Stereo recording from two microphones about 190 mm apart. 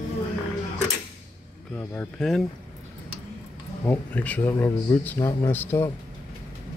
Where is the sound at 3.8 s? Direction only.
10° left (ahead or behind).